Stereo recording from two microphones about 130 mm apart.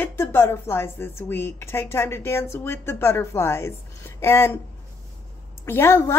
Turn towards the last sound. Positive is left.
turn(degrees=20)  # may be behind; listen again after turning